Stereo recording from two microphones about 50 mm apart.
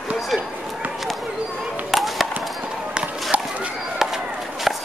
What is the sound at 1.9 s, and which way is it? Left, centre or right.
Chop, centre.